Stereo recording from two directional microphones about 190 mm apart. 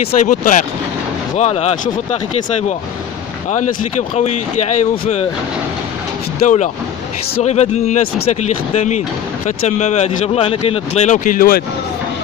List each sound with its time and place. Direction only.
0.2 s speech: 45° left (ahead or behind)
3.5 s speech: 40° left (ahead or behind)
6.4 s speech: 40° left (ahead or behind)